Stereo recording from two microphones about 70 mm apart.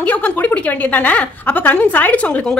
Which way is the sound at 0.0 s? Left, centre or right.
Left.